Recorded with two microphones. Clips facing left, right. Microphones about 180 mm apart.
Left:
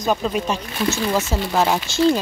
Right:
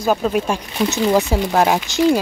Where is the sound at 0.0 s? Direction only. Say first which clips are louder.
Right 3 dB; 10° right (ahead or behind).